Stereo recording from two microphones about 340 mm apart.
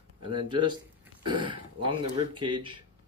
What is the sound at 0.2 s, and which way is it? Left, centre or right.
Speech, centre.